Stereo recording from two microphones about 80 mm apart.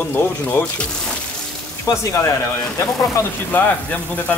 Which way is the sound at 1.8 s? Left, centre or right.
Left.